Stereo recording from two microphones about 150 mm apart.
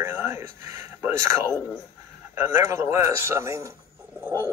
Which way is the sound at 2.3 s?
15° right (ahead or behind).